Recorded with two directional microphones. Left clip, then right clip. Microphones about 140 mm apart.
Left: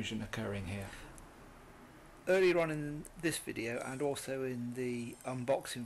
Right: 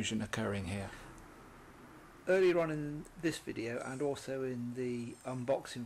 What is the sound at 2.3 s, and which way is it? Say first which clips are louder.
Speech: even; 10° left (ahead or behind).